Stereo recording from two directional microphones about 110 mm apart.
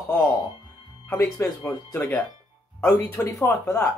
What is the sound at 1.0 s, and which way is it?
Speech, 25° left (ahead or behind).